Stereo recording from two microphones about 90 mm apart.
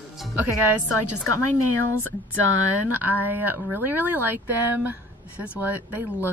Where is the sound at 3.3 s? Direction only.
20° right (ahead or behind).